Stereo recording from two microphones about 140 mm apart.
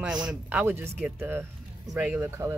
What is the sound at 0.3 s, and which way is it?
Speech, 10° right (ahead or behind).